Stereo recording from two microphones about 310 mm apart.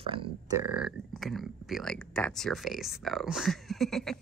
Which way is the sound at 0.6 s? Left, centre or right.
Centre.